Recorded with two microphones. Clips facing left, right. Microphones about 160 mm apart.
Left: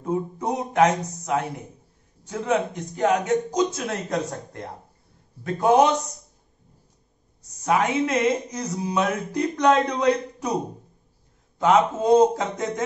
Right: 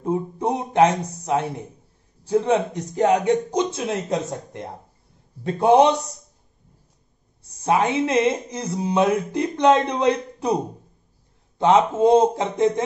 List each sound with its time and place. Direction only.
0.0 s speech: 30° right (ahead or behind)
7.6 s speech: 30° right (ahead or behind)